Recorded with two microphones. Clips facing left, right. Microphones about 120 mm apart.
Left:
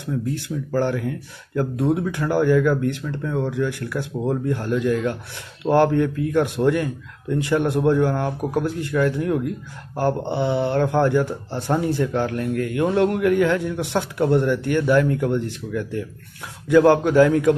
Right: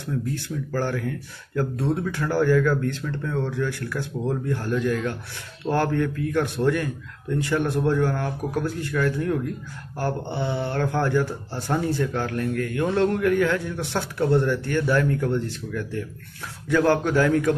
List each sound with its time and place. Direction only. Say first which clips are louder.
0.7 s speech: left 5 dB; 20° left (ahead or behind)